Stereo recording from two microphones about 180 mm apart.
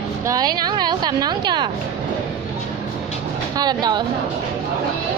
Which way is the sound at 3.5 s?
20° right (ahead or behind).